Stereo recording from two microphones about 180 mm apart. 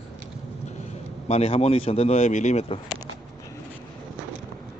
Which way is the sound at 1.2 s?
35° left (ahead or behind).